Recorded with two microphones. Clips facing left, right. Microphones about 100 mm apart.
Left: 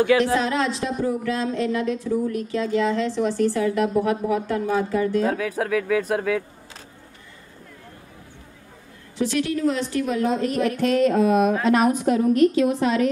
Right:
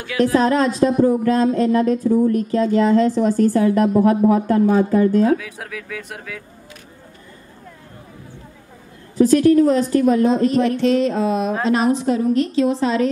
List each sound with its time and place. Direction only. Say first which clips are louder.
0.2 s speech: right 6 dB; 45° right (ahead or behind)
5.4 s speech: left 9 dB; 45° left (ahead or behind)
5.9 s speech: left 10 dB; 40° left (ahead or behind)
9.2 s speech: right 10 dB; 40° right (ahead or behind)
10.2 s a woman's voice: right 6 dB; 30° right (ahead or behind)